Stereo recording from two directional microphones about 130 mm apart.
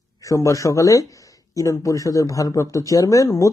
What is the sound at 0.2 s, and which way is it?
Speech, 25° left (ahead or behind).